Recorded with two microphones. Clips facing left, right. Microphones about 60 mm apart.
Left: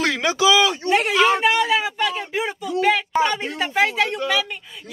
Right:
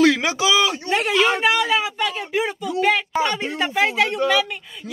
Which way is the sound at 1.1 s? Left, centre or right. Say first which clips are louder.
Right 1 dB; centre.